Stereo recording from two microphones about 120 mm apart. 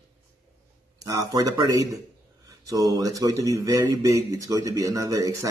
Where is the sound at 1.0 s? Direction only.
30° right (ahead or behind).